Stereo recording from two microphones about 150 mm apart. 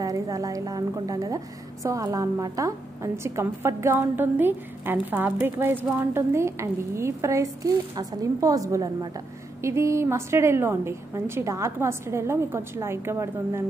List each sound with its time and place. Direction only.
0.0 s a woman's voice: 25° right (ahead or behind)